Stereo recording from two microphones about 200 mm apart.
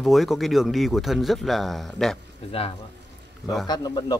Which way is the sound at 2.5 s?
30° left (ahead or behind).